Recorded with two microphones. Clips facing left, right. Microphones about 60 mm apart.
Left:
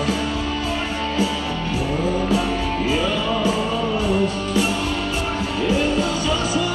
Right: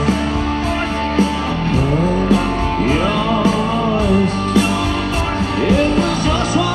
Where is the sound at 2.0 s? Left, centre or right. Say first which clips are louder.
Right 3 dB; right.